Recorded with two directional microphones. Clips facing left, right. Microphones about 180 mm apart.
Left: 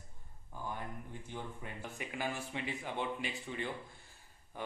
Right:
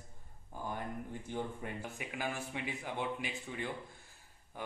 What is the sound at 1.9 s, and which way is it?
Speech, 10° right (ahead or behind).